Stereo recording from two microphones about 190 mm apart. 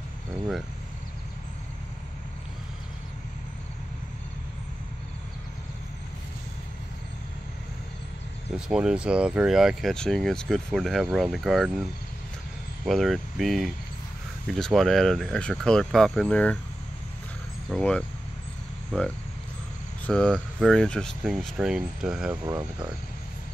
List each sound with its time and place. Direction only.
8.5 s speech: 5° right (ahead or behind)
17.6 s speech: 5° left (ahead or behind)
18.9 s cricket: 5° left (ahead or behind)
20.1 s speech: 5° left (ahead or behind)
22.3 s speech: 20° right (ahead or behind)